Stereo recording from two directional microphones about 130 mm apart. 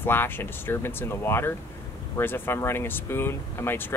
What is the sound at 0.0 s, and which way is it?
Speech, 15° left (ahead or behind).